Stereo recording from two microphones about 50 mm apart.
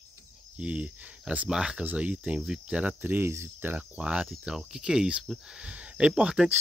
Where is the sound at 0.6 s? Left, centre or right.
Right.